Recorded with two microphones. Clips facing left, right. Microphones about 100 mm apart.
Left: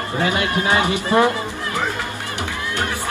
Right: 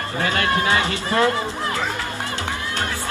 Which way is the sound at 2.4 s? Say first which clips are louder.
Left 1 dB; 20° right (ahead or behind).